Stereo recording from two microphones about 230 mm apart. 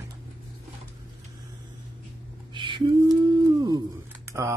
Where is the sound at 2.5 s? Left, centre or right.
Right.